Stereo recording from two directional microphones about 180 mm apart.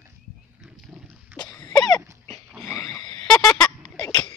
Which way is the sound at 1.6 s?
20° left (ahead or behind).